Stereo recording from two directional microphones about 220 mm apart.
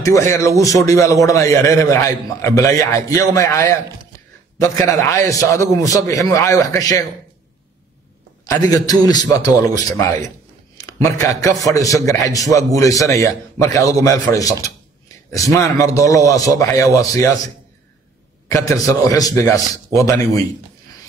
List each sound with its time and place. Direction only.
0.0 s a man's voice: 15° left (ahead or behind)
4.8 s a man's voice: 15° left (ahead or behind)
8.5 s a man's voice: 15° left (ahead or behind)
18.5 s a man's voice: 15° left (ahead or behind)